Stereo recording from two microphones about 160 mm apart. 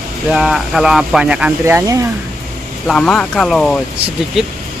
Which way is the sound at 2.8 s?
5° left (ahead or behind).